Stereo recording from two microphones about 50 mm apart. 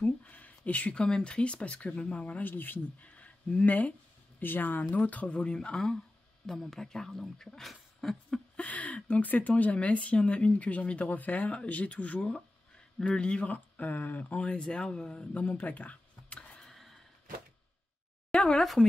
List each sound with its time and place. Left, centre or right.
0.0 s a sound: left
1.0 s speech: centre; by 3.1 s left
3.1 s speech: left
4.4 s speech: left; by 7.6 s centre
7.6 s a sound: centre
8.5 s speech: left
12.4 s speech: centre; by 14.2 s left
14.3 s speech: left
16.5 s a sound: centre
18.6 s speech: centre